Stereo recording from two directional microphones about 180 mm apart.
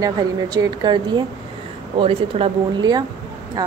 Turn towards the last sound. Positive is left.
turn(degrees=-25)  # may be behind; listen again after turning